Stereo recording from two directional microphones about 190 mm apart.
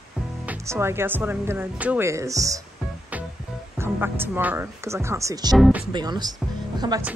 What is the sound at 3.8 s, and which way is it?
Speech, 10° right (ahead or behind).